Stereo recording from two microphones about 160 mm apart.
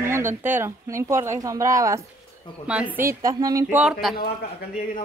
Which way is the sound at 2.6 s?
10° right (ahead or behind).